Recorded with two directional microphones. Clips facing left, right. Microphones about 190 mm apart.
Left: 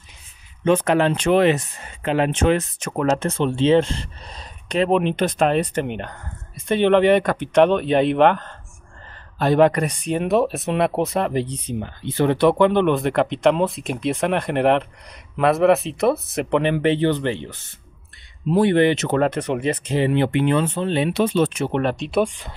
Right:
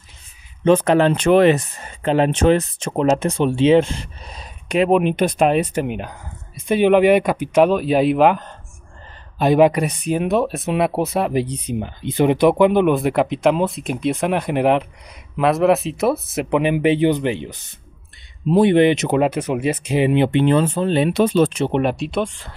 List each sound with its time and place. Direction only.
0.7 s speech: 35° right (ahead or behind)
3.0 s speech: 15° right (ahead or behind); by 21.7 s 30° right (ahead or behind)
21.7 s speech: 10° right (ahead or behind)
22.1 s speech: 15° left (ahead or behind)